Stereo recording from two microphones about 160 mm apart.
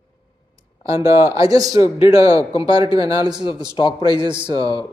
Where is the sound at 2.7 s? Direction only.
25° right (ahead or behind).